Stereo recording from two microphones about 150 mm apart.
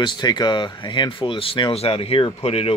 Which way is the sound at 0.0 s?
30° left (ahead or behind).